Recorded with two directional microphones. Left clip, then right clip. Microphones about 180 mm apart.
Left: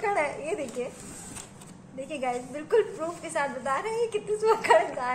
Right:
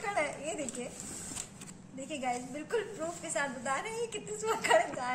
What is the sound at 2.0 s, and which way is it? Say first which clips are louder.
A woman's voice: left 5 dB; 30° left (ahead or behind).